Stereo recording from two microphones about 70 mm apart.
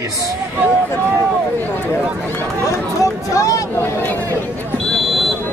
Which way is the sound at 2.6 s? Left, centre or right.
Left.